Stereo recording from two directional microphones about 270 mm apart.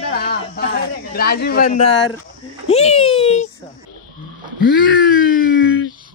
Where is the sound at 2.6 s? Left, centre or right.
Left.